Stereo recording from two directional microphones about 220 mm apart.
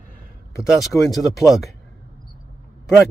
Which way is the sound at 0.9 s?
5° left (ahead or behind).